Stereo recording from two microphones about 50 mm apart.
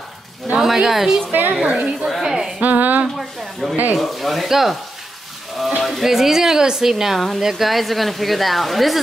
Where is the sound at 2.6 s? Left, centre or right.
Right.